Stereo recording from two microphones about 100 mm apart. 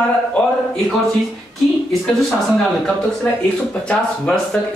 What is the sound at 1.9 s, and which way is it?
A woman's voice, centre (ahead or behind).